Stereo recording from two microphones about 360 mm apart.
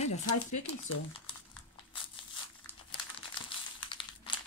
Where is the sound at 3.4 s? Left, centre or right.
Centre.